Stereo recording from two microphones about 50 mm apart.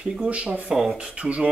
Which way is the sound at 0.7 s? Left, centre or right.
Centre.